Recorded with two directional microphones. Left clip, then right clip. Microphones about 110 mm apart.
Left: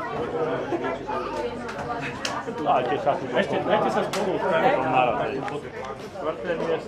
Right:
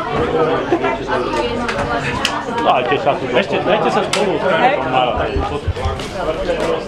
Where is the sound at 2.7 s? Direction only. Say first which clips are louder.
Right 7 dB; 50° left (ahead or behind).